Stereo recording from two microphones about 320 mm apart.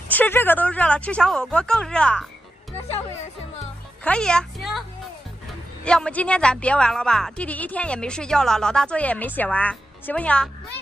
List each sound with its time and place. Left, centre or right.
0.1 s speech: centre
4.0 s speech: centre
5.9 s speech: centre